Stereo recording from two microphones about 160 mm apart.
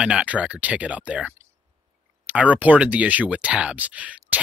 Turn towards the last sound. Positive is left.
turn(degrees=-10)  # may be behind; listen again after turning